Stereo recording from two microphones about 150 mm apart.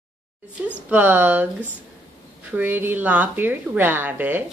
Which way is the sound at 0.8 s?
10° right (ahead or behind).